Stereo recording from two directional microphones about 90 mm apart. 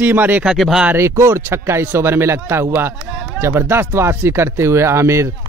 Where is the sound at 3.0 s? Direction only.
10° right (ahead or behind).